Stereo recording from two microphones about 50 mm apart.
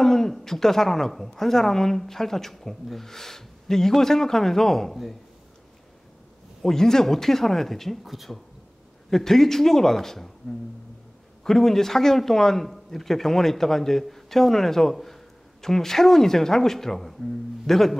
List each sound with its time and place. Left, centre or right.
0.0 s a woman's voice: centre
6.6 s a woman's voice: centre
11.4 s a woman's voice: centre